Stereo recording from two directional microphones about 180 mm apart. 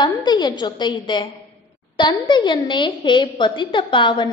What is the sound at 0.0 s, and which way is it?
A woman's voice, 25° left (ahead or behind).